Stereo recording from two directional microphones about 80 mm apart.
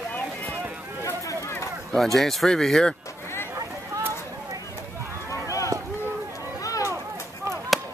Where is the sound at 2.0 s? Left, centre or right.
Centre.